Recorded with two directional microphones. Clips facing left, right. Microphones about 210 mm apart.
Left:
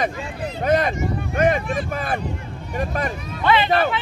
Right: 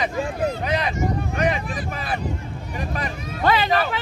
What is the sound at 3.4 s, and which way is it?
Speech, 40° right (ahead or behind).